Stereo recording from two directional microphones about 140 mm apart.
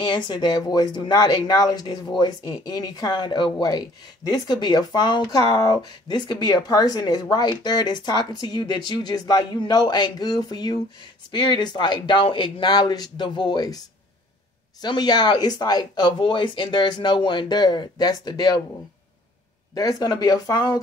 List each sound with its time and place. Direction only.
0.0 s speech: 35° left (ahead or behind)
14.8 s speech: 30° left (ahead or behind)
19.7 s speech: 25° left (ahead or behind)